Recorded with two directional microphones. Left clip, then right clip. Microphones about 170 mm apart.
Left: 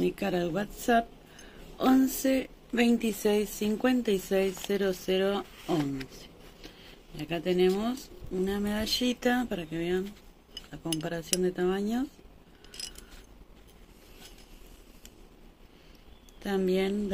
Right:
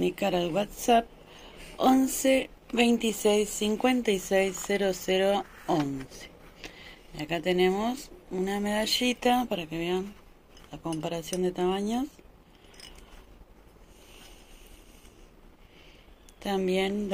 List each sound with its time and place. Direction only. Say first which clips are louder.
0.0 s a woman's voice: right 2 dB; 15° left (ahead or behind)
11.1 s a woman's voice: even; 15° left (ahead or behind)
16.3 s speech: right 1 dB; 20° left (ahead or behind)